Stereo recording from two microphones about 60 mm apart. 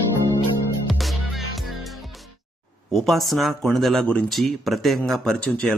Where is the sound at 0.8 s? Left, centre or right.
Centre.